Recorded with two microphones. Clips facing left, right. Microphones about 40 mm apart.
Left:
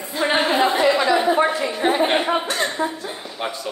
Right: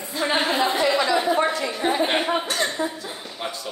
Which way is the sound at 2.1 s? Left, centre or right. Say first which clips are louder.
Left 2 dB; centre.